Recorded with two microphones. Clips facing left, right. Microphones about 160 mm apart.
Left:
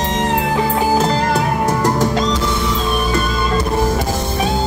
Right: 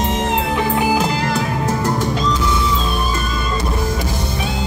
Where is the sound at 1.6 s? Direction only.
80° left.